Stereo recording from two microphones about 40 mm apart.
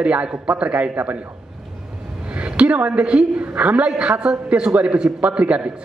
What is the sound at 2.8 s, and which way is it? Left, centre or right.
A man's voice, right.